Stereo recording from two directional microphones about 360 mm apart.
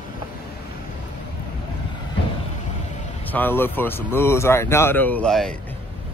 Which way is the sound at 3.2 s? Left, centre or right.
Centre.